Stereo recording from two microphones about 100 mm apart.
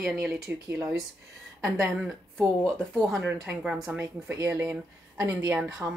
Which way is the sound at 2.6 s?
5° left (ahead or behind).